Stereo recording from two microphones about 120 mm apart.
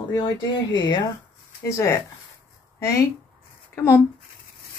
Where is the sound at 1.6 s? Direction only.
25° left (ahead or behind).